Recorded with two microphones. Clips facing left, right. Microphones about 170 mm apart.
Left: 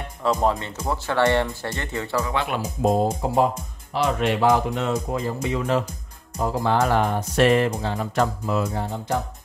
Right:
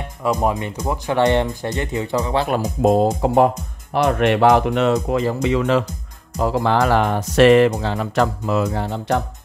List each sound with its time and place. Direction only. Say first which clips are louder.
0.2 s speech: right 2 dB; 10° right (ahead or behind)
2.3 s speech: right 6 dB; 40° right (ahead or behind)
2.8 s speech: right 5 dB; 75° right (ahead or behind)